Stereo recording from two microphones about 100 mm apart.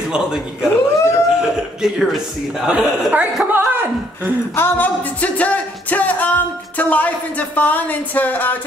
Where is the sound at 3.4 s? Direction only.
20° right (ahead or behind).